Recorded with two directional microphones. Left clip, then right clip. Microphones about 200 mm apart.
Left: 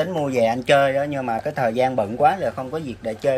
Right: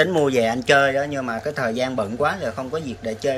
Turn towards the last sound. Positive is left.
turn(degrees=15)  # may be behind; listen again after turning